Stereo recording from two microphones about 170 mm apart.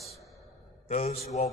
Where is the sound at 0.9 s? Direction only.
40° left (ahead or behind).